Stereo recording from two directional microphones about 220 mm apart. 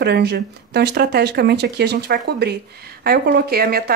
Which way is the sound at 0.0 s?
50° right (ahead or behind).